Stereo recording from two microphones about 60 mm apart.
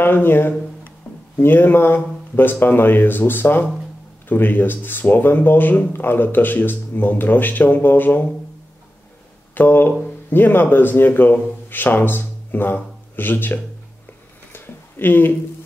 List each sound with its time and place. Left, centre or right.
0.0 s speech: left
9.5 s speech: left
14.5 s a sound: left